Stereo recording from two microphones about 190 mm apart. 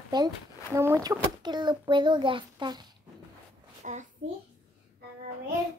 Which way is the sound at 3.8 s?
40° right (ahead or behind).